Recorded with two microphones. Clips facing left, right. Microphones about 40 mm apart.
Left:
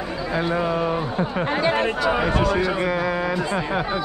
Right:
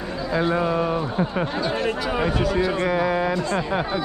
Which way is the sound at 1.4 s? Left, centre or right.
Left.